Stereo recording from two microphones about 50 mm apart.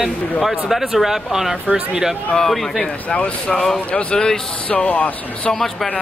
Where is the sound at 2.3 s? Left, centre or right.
Centre.